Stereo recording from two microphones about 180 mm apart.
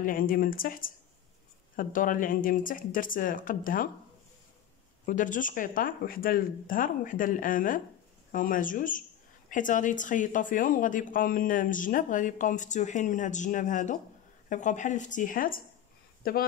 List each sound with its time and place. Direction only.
0.0 s speech: 50° left (ahead or behind)
5.0 s speech: 45° left (ahead or behind)